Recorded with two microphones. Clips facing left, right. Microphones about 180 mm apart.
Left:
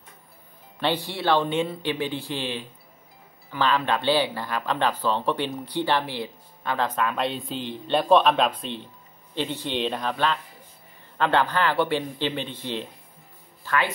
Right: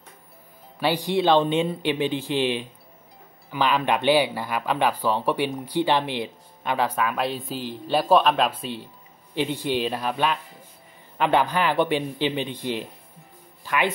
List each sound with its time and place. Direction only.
0.7 s speech: 10° right (ahead or behind)